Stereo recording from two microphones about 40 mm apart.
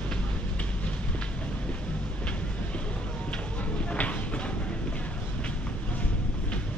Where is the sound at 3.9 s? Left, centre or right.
Left.